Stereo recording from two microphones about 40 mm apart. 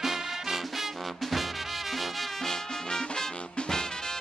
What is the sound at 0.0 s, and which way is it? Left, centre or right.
Music, centre.